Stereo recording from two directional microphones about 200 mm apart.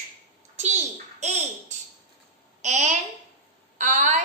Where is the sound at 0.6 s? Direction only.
35° right (ahead or behind).